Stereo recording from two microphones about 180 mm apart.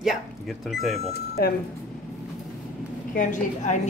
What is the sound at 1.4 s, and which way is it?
Speech, 55° left (ahead or behind).